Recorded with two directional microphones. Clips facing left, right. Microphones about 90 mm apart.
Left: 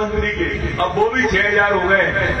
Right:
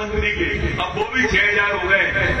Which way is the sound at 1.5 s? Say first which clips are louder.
Left 4 dB; 30° left (ahead or behind).